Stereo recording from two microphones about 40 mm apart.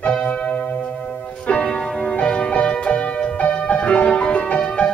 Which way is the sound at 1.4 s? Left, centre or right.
Left.